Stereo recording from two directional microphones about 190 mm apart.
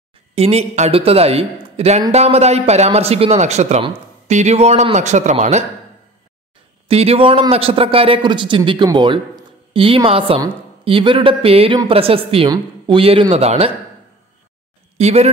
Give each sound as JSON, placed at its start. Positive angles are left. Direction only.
{"t": 0.3, "sound": "speech", "side_deg": -30}
{"t": 6.9, "sound": "a man's voice", "side_deg": -30}
{"t": 15.0, "sound": "speech", "side_deg": -35}